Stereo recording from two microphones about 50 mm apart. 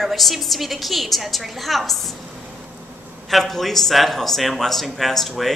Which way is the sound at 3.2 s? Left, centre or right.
Centre.